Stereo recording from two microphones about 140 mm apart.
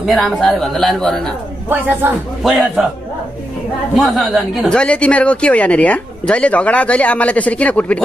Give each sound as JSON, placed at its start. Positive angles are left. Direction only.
{"t": 0.0, "sound": "speech", "side_deg": 0}
{"t": 1.7, "sound": "a man's voice", "side_deg": -15}
{"t": 2.4, "sound": "speech", "side_deg": 0}
{"t": 3.9, "sound": "speech", "side_deg": 0}